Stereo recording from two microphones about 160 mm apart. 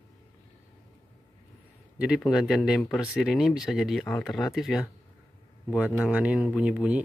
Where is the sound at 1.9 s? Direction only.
5° right (ahead or behind).